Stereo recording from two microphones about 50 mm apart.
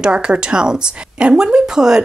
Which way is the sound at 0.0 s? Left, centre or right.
Centre.